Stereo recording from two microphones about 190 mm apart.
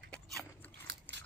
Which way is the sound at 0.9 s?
65° right (ahead or behind).